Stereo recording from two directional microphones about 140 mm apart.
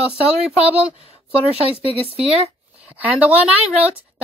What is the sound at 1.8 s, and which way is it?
Speech, 45° right (ahead or behind).